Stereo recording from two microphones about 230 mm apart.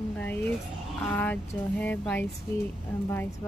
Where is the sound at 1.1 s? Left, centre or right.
Centre.